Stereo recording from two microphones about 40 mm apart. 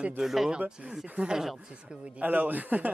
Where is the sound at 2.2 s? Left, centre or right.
Right.